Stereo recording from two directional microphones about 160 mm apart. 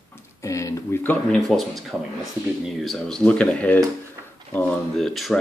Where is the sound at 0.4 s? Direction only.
20° left (ahead or behind).